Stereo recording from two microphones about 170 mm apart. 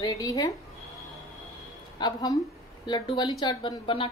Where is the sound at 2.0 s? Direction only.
25° left (ahead or behind).